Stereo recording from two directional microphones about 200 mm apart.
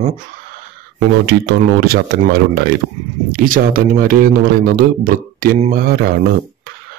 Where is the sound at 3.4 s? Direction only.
45° right (ahead or behind).